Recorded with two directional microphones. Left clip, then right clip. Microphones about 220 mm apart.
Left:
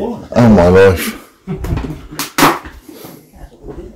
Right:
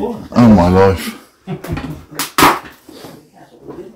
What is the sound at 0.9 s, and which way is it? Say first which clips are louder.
Speech: left 3 dB; 30° left (ahead or behind).